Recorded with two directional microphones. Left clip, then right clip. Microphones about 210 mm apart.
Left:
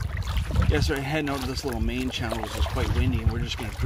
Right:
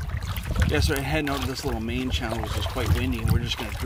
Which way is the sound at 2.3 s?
30° left (ahead or behind).